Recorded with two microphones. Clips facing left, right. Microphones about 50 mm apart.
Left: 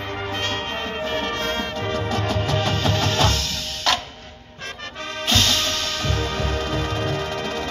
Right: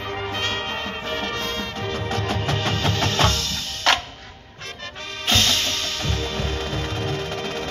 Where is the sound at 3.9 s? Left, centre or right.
Right.